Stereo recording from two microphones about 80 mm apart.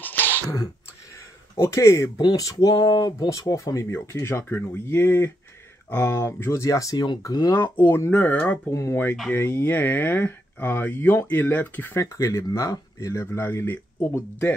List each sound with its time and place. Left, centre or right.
0.0 s sneeze: left
1.6 s speech: left
7.5 s speech: left
8.6 s speech: left
12.0 s speech: left